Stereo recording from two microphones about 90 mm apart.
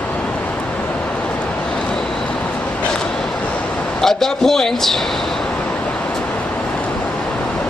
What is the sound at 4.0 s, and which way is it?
Speech, 5° left (ahead or behind).